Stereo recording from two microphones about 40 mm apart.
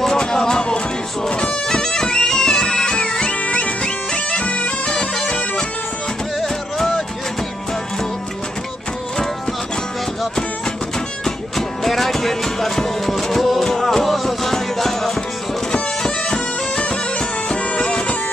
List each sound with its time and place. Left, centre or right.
0.2 s music: centre
1.8 s bagpipes: centre
4.9 s bagpipes: centre
6.4 s music: centre
11.2 s music: centre
17.5 s bagpipes: left